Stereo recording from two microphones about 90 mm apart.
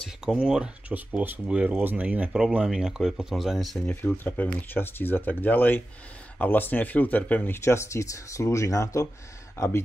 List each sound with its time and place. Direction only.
0.2 s speech: 10° right (ahead or behind)
3.8 s speech: 20° left (ahead or behind)
7.6 s speech: 30° left (ahead or behind)